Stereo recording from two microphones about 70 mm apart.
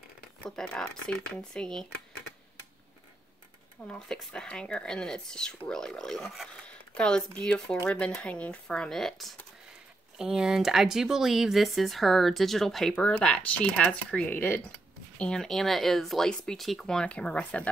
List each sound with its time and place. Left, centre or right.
0.5 s speech: centre
3.8 s speech: centre
10.1 s speech: centre
13.0 s speech: centre
14.3 s speech: left
15.1 s speech: centre